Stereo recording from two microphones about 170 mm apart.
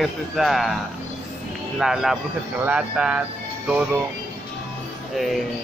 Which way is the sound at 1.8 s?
Centre (ahead or behind).